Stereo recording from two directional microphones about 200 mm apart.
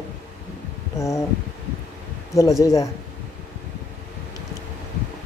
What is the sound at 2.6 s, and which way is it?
Speech, 15° left (ahead or behind).